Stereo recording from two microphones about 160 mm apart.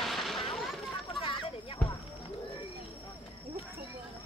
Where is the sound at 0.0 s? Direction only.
Centre (ahead or behind).